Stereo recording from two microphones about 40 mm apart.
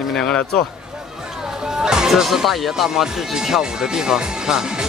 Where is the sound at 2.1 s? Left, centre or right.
Centre.